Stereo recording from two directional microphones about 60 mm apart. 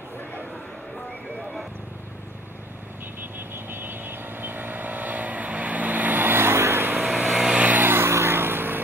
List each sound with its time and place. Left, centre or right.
3.3 s vehicle: right
7.2 s vehicle: centre
7.6 s vehicle: right
7.9 s vehicle: right